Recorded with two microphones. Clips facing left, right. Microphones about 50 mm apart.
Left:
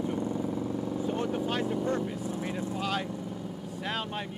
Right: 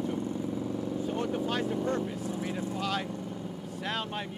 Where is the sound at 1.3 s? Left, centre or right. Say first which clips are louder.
Left 1 dB; centre.